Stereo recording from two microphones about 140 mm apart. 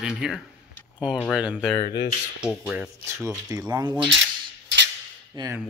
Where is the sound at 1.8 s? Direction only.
30° left (ahead or behind).